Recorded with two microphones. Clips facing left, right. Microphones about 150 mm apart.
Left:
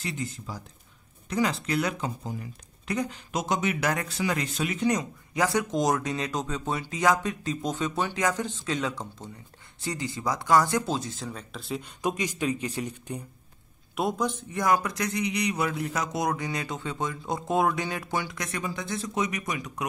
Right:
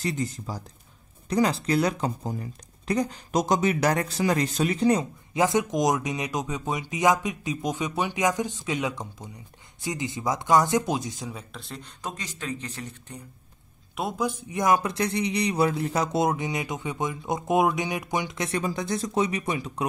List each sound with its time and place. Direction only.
0.0 s speech: 40° right (ahead or behind); by 11.6 s 10° right (ahead or behind)
11.6 s speech: 10° left (ahead or behind)
13.9 s speech: centre (ahead or behind); by 19.8 s 30° right (ahead or behind)